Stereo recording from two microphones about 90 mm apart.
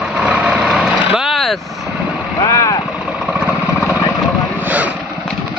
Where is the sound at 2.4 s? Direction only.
40° left (ahead or behind).